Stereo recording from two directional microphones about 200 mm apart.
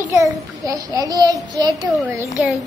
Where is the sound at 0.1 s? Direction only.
15° right (ahead or behind).